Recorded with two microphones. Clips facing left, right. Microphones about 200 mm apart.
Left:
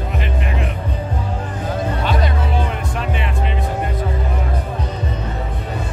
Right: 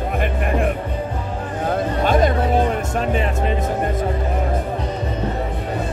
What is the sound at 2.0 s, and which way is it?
Music, 45° right (ahead or behind).